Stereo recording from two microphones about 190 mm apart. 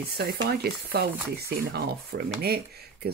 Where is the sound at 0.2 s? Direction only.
55° right (ahead or behind).